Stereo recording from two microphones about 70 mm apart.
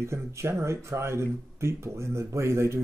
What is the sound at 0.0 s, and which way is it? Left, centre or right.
Speech, right.